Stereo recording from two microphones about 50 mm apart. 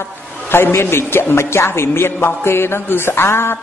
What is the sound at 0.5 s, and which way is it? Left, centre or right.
A man's voice, left.